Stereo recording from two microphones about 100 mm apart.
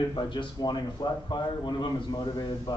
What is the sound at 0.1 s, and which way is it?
Speech, 50° left (ahead or behind).